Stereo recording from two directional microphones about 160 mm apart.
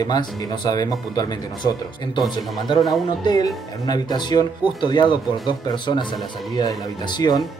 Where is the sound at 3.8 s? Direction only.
25° left (ahead or behind).